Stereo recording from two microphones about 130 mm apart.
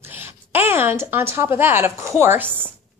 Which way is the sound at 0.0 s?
15° right (ahead or behind).